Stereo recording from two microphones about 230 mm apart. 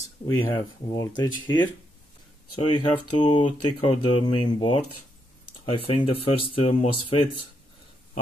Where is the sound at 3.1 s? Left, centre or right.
Left.